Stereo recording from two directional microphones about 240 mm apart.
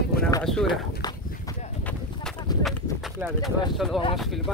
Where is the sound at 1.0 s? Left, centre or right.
Centre.